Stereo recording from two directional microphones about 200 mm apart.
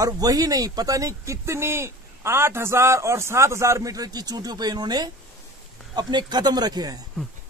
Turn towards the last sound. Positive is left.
turn(degrees=-20)  # may be behind; listen again after turning